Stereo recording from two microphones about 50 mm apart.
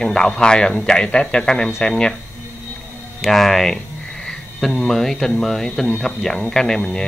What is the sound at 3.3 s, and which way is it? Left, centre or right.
A man's voice, centre.